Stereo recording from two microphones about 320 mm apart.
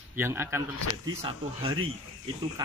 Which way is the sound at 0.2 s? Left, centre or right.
Centre.